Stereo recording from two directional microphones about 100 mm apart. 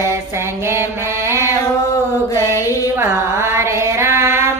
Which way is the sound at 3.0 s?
25° right (ahead or behind).